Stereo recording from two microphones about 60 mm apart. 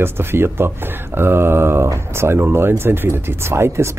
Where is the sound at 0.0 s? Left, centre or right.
Right.